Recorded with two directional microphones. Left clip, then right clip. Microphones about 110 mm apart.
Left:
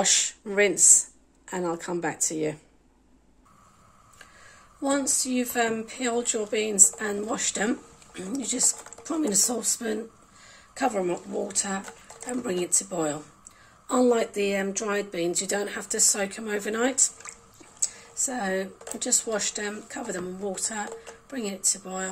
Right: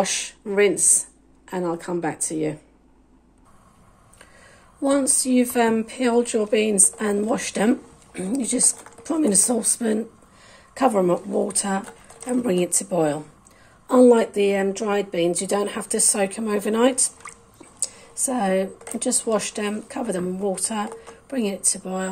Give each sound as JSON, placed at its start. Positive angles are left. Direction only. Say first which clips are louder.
{"t": 0.2, "sound": "a woman's voice", "louder": "right 4 dB", "side_deg": 5}
{"t": 5.0, "sound": "speech", "louder": "right 7 dB", "side_deg": -30}
{"t": 10.5, "sound": "a sound", "louder": "right 7 dB", "side_deg": -30}
{"t": 10.9, "sound": "speech", "louder": "right 9 dB", "side_deg": -40}
{"t": 12.4, "sound": "speech", "louder": "right 4 dB", "side_deg": -25}